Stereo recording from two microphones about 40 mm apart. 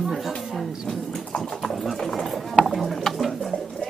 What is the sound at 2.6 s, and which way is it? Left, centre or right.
Tick-tock, centre.